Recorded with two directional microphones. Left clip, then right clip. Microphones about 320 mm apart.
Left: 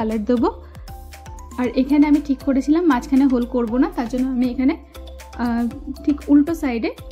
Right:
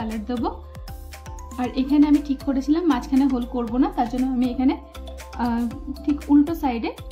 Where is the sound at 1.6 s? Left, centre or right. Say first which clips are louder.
Left 3 dB; centre.